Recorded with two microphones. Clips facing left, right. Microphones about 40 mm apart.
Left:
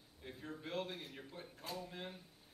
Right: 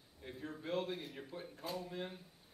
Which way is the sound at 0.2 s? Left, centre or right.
Centre.